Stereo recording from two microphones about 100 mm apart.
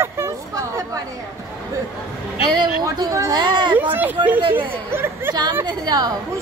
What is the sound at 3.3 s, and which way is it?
Speech, 45° right (ahead or behind).